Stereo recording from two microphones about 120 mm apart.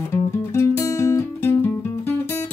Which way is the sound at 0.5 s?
25° left (ahead or behind).